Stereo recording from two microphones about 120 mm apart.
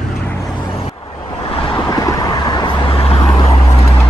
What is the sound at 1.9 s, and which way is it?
Vehicle, 30° left (ahead or behind).